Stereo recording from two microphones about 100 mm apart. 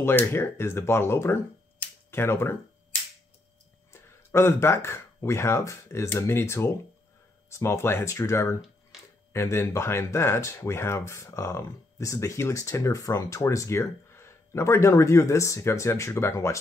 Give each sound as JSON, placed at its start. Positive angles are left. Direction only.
{"t": 0.0, "sound": "speech", "side_deg": 20}
{"t": 3.9, "sound": "speech", "side_deg": 25}